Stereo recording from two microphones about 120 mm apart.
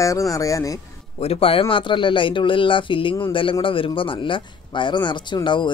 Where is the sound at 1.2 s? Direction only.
55° left (ahead or behind).